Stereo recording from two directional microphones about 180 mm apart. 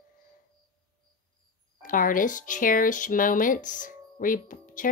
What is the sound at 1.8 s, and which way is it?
Speech, 50° left (ahead or behind).